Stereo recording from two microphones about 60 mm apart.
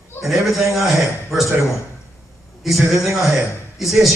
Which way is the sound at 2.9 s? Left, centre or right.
Centre.